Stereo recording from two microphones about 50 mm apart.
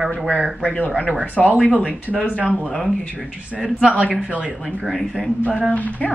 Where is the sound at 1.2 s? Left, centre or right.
Left.